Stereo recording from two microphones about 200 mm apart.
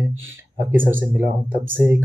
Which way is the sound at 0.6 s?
15° right (ahead or behind).